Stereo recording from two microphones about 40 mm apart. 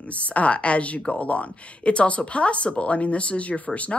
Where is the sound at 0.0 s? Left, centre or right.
Left.